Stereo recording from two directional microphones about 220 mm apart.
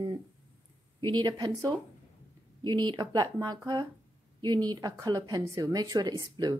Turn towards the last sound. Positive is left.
turn(degrees=-20)  # may be behind; listen again after turning